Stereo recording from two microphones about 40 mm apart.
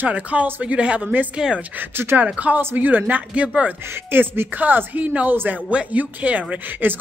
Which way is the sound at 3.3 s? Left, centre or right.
Right.